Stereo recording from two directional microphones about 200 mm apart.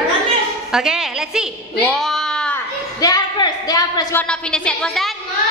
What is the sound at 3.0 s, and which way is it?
A woman's voice, 20° left (ahead or behind).